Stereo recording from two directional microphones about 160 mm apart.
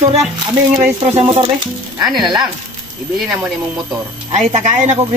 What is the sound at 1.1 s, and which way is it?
Speech, 35° right (ahead or behind).